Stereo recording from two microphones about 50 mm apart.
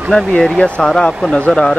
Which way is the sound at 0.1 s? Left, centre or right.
Centre.